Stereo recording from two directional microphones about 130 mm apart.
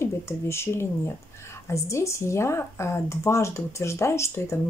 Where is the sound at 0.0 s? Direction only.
20° left (ahead or behind).